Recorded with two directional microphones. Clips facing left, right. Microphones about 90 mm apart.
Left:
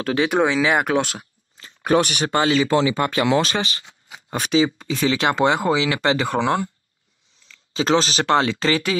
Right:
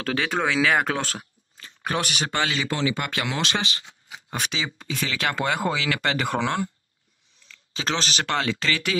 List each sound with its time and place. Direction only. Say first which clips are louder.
0.0 s speech: left 6 dB; 20° left (ahead or behind)
2.3 s speech: left 10 dB; 35° left (ahead or behind)